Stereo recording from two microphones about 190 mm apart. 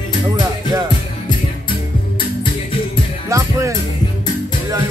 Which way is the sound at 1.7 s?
25° left (ahead or behind).